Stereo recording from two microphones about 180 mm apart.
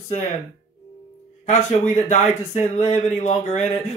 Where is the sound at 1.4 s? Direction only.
40° left (ahead or behind).